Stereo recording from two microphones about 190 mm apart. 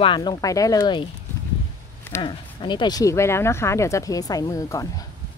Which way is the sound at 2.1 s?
25° left (ahead or behind).